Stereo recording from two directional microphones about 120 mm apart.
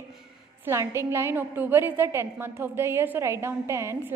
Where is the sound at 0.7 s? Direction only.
20° right (ahead or behind).